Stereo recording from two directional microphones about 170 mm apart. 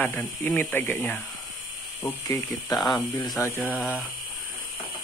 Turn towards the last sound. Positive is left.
turn(degrees=15)  # may be behind; listen again after turning